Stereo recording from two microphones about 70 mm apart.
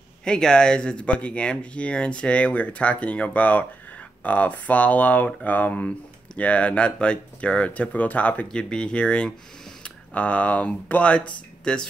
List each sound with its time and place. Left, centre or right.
0.2 s speech: centre